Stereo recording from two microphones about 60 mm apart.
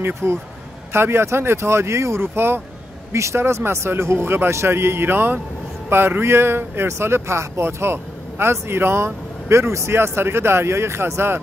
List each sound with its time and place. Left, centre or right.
0.0 s speech: right
3.1 s speech: right